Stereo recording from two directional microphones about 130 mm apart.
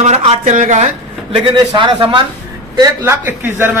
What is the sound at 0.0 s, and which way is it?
Speech, 55° right (ahead or behind).